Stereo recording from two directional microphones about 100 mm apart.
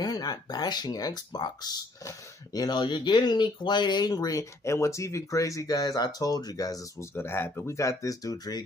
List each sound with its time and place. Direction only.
0.0 s speech: 40° left (ahead or behind)
7.2 s speech: 25° left (ahead or behind); by 8.6 s 40° left (ahead or behind)